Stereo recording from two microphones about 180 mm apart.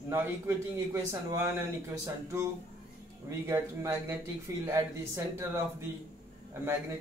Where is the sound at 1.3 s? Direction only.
15° right (ahead or behind).